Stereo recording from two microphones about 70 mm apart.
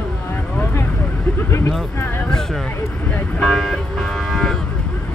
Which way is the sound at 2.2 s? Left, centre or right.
Centre.